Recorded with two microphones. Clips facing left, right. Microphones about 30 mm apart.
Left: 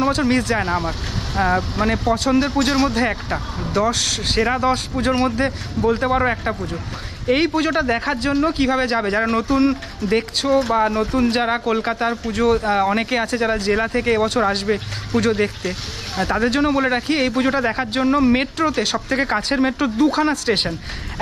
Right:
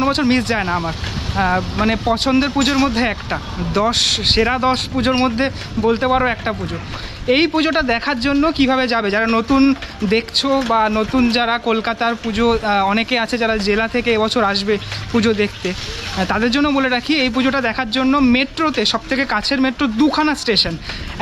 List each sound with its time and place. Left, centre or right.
0.1 s a man's voice: right
0.6 s speech: right
2.1 s a man's voice: right
3.7 s speech: right
4.4 s speech: right
4.9 s a man's voice: right
5.9 s speech: right
7.2 s a man's voice: right
10.7 s a man's voice: right
11.4 s a man's voice: right
14.7 s speech: right
15.1 s speech: right
16.4 s speech: right
17.1 s a man's voice: right